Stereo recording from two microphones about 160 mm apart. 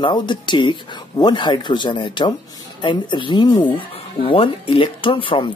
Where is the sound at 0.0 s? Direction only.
30° left (ahead or behind).